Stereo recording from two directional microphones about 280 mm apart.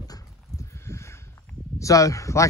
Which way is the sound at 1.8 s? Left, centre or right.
Centre.